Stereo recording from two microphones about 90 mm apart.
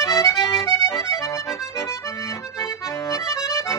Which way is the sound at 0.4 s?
5° right (ahead or behind).